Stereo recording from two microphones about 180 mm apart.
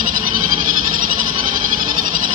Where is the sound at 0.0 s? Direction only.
50° right (ahead or behind).